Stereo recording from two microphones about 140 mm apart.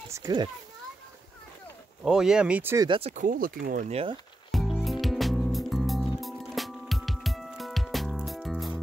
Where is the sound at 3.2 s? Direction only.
90° right.